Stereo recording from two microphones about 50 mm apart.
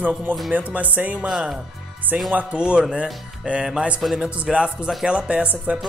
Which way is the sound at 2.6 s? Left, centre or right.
Centre.